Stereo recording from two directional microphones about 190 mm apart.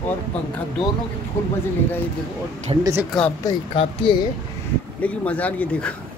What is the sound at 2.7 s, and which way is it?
Speech, 25° right (ahead or behind).